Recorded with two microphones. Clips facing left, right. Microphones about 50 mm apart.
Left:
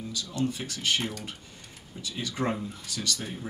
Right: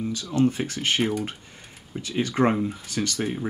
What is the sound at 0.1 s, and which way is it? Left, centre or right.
Speech, right.